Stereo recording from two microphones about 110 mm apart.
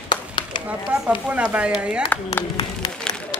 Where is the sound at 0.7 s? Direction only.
10° right (ahead or behind).